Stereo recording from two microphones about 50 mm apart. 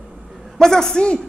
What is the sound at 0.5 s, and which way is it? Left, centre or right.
Speech, centre.